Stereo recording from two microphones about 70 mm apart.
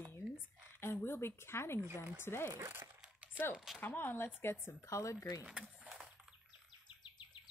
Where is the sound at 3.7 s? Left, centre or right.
Left.